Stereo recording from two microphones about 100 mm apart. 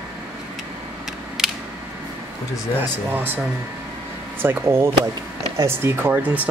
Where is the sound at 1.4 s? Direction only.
5° right (ahead or behind).